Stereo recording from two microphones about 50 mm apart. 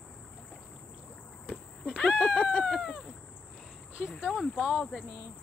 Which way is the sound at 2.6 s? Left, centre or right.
Centre.